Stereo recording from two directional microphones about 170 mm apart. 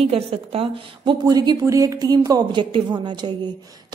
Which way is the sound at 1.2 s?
25° right (ahead or behind).